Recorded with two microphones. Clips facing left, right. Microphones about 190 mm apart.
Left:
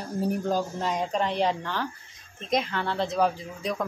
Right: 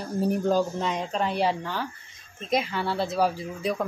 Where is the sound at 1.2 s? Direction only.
5° right (ahead or behind).